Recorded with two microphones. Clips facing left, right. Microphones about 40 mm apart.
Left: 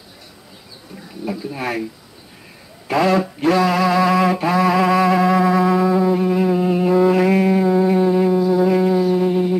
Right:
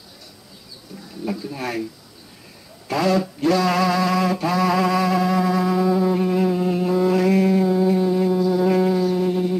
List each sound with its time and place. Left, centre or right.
1.2 s speech: centre
2.9 s speech: left
3.6 s music: centre
7.9 s a sound: left
8.6 s music: centre